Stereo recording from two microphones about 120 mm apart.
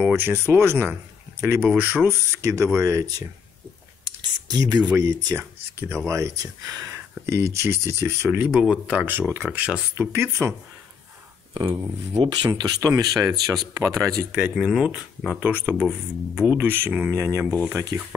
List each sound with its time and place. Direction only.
0.0 s speech: 15° right (ahead or behind)
4.0 s a sound: 35° right (ahead or behind)
4.9 s speech: 25° right (ahead or behind)
8.5 s speech: 5° right (ahead or behind)
11.5 s speech: 35° right (ahead or behind)
14.3 s speech: 5° right (ahead or behind)